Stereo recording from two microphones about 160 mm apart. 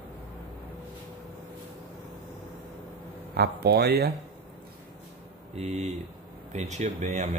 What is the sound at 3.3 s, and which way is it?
Speech, 80° right.